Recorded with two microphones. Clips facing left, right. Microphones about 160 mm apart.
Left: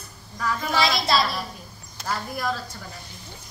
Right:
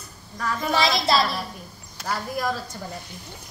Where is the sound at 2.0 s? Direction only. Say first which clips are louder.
Right 2 dB; 10° right (ahead or behind).